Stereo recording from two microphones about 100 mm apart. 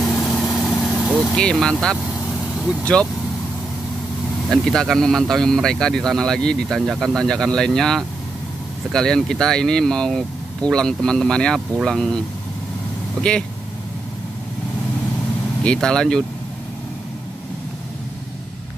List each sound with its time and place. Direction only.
0.0 s vehicle: centre (ahead or behind)
1.3 s speech: 5° left (ahead or behind)
4.5 s speech: centre (ahead or behind)
15.6 s speech: 10° left (ahead or behind)